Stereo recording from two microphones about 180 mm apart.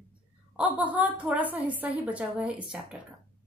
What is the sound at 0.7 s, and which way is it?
A woman's voice, 10° right (ahead or behind).